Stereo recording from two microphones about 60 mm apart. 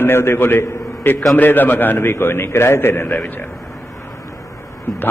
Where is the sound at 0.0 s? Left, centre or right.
Left.